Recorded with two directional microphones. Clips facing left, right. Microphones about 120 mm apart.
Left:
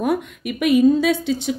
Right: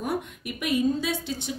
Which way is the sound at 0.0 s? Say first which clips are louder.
Left 8 dB; 75° left (ahead or behind).